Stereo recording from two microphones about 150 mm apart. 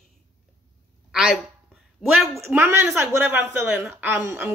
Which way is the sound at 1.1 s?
5° right (ahead or behind).